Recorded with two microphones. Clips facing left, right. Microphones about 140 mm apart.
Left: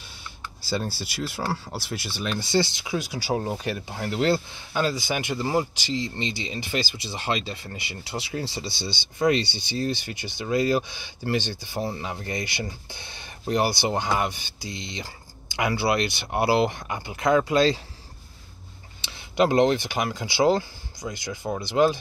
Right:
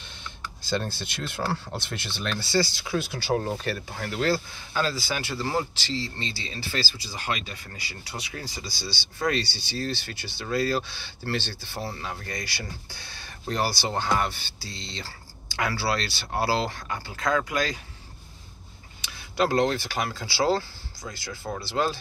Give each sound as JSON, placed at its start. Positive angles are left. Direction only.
{"t": 0.2, "sound": "speech", "side_deg": 10}
{"t": 18.9, "sound": "speech", "side_deg": 20}